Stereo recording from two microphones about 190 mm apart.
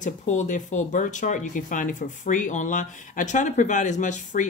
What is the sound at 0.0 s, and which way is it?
Speech, 40° left (ahead or behind).